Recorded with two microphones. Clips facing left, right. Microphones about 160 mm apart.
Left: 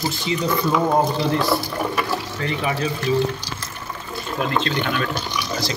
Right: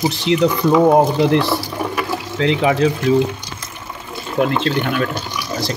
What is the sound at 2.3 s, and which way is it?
Speech, 90° right.